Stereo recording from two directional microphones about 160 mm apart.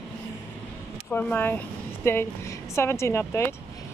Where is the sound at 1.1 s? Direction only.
10° left (ahead or behind).